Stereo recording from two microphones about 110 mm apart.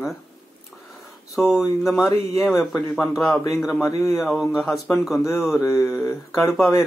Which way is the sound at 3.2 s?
5° left (ahead or behind).